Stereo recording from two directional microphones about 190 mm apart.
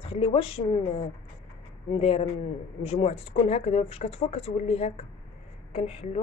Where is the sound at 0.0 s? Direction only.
30° left (ahead or behind).